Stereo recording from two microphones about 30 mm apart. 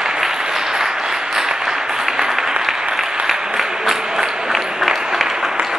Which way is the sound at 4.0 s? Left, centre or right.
Right.